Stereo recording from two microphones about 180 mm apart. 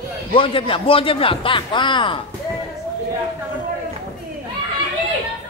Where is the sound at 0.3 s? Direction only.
30° left (ahead or behind).